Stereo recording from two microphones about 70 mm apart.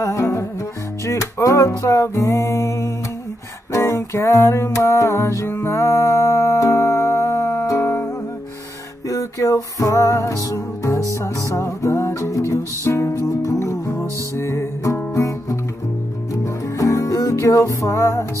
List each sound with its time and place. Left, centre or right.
0.0 s music: left
9.1 s music: left
13.2 s music: left
16.7 s music: left